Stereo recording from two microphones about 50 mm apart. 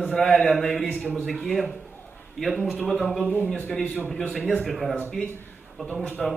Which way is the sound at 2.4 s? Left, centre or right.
Centre.